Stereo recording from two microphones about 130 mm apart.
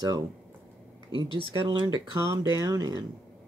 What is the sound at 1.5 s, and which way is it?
Speech, 40° right (ahead or behind).